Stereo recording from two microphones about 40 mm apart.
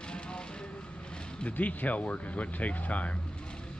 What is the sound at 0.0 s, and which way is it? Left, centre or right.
Vehicle, left.